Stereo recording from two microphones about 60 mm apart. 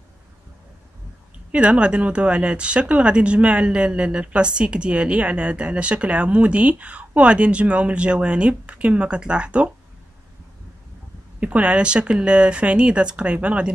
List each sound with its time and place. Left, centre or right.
1.5 s speech: centre
11.3 s speech: right